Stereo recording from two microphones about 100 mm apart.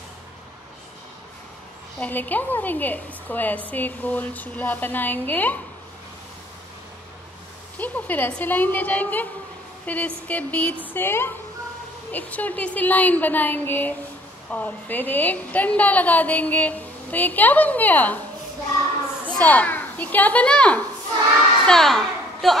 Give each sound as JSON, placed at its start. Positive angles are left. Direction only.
{"t": 2.0, "sound": "a woman's voice", "side_deg": 15}
{"t": 7.7, "sound": "a woman's voice", "side_deg": 15}
{"t": 19.2, "sound": "a child's voice", "side_deg": 15}